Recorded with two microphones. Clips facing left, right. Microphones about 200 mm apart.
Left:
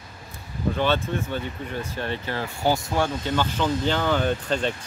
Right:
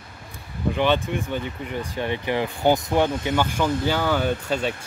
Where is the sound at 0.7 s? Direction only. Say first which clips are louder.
Right 3 dB; 15° right (ahead or behind).